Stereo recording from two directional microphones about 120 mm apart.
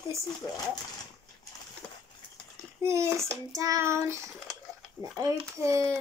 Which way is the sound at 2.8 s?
25° right (ahead or behind).